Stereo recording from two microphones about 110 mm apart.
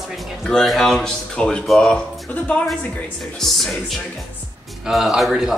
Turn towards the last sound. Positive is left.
turn(degrees=-5)  # may be behind; listen again after turning